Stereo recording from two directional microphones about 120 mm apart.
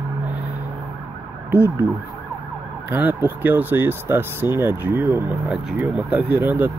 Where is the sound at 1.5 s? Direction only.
15° right (ahead or behind).